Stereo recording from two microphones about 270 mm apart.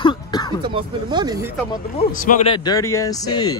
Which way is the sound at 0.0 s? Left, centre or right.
Centre.